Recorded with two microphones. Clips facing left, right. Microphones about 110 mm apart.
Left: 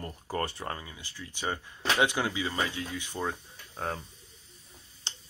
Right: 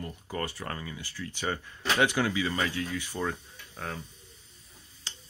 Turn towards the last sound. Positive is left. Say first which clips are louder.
# left 1 dB
turn(degrees=25)  # may be behind; listen again after turning